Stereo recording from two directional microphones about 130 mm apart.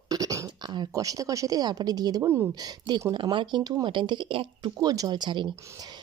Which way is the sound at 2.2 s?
20° right (ahead or behind).